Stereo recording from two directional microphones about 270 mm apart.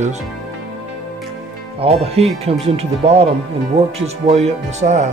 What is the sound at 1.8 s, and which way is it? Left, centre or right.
Speech, right.